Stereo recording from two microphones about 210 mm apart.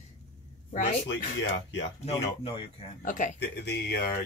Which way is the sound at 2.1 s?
30° left (ahead or behind).